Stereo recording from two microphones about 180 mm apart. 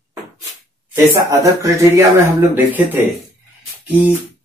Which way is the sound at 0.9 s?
15° right (ahead or behind).